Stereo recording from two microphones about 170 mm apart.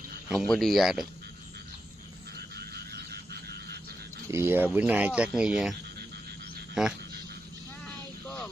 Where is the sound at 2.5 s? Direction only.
70° right (ahead or behind).